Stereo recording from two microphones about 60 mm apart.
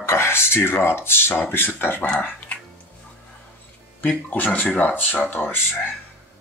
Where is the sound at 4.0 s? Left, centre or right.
Left.